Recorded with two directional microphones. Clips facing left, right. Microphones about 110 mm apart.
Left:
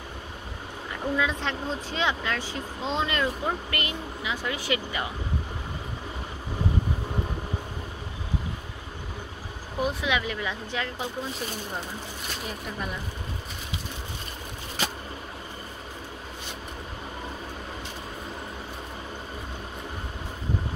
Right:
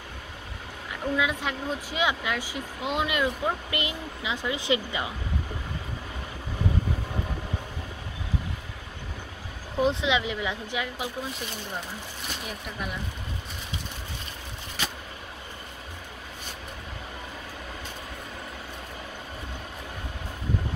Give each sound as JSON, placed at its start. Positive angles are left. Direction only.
{"t": 1.1, "sound": "speech", "side_deg": -10}
{"t": 9.8, "sound": "speech", "side_deg": -25}